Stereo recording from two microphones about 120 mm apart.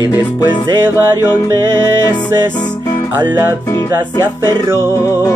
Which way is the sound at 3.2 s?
20° right (ahead or behind).